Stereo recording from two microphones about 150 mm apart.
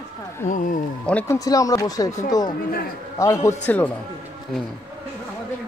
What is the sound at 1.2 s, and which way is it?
Speech, 20° left (ahead or behind).